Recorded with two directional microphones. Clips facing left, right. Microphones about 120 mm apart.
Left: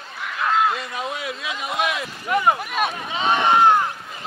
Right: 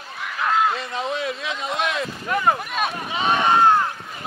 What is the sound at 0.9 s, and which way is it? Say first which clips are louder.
Speech: right 3 dB; 30° right (ahead or behind).